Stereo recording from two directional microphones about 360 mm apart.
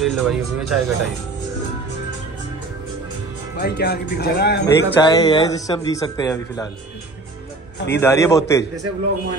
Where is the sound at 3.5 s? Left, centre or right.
Left.